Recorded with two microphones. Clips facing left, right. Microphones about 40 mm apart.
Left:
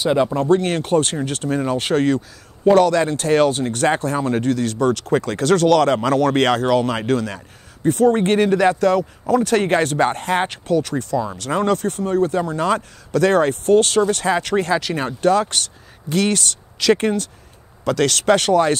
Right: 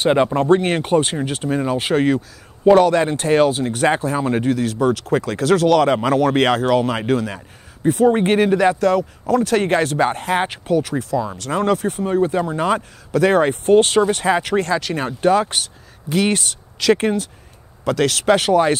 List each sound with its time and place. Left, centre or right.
0.0 s speech: right
3.3 s speech: centre
14.6 s speech: centre
15.2 s speech: centre